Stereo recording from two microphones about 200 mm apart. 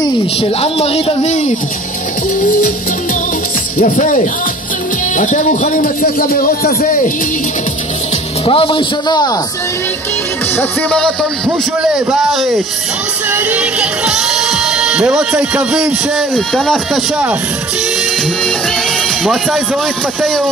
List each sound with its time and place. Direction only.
0.0 s speech: 30° left (ahead or behind)
2.4 s music: 40° left (ahead or behind)
3.7 s a man's voice: 45° left (ahead or behind)
8.5 s speech: 25° left (ahead or behind)
10.6 s speech: 5° left (ahead or behind)